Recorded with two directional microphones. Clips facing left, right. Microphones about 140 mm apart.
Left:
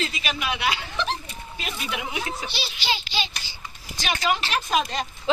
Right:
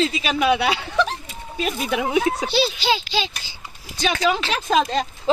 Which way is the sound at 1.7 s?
45° right (ahead or behind).